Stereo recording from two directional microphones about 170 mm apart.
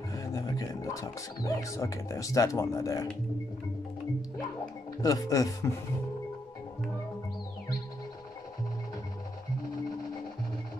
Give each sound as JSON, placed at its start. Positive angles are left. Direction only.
{"t": 0.1, "sound": "speech", "side_deg": 20}
{"t": 5.0, "sound": "speech", "side_deg": 20}